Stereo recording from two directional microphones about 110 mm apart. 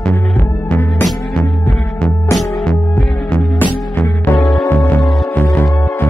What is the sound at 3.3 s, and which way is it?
Music, 15° left (ahead or behind).